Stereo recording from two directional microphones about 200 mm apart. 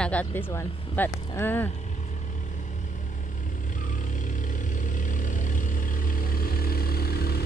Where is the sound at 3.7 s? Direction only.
40° left (ahead or behind).